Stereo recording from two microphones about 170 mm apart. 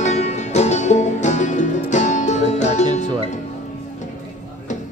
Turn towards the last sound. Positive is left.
turn(degrees=45)  # may be behind; listen again after turning